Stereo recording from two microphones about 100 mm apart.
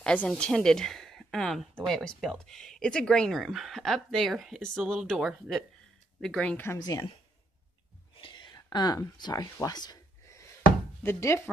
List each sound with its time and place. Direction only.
0.0 s speech: 15° left (ahead or behind)
6.2 s speech: 10° left (ahead or behind)
6.8 s speech: 35° left (ahead or behind)
8.2 s whispering: 50° left (ahead or behind)
8.5 s speech: 45° left (ahead or behind)
11.0 s speech: 25° left (ahead or behind)